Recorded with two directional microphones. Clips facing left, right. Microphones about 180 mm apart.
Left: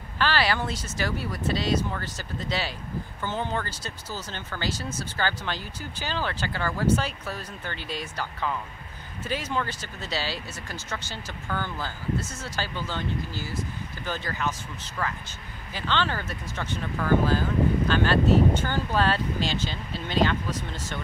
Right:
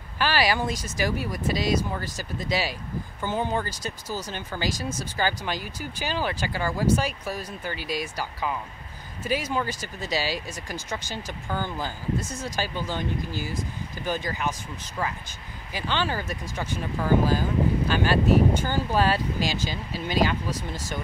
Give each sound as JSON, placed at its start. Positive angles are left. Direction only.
{"t": 0.2, "sound": "speech", "side_deg": -10}